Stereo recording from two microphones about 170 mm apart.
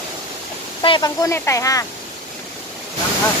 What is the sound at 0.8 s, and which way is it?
Speech, 25° left (ahead or behind).